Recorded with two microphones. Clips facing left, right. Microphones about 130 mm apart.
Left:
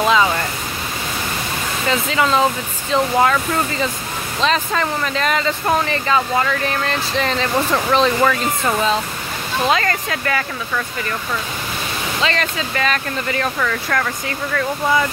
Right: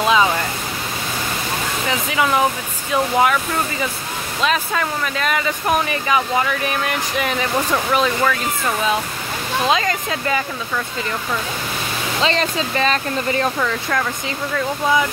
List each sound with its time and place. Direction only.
0.0 s a sound: 15° right (ahead or behind)
1.9 s speech: 15° right (ahead or behind)
8.2 s speech: 10° left (ahead or behind)
9.7 s speech: 15° right (ahead or behind)
12.2 s speech: 30° right (ahead or behind)
13.6 s speech: 15° right (ahead or behind)